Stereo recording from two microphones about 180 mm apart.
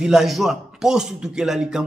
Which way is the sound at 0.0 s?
Centre (ahead or behind).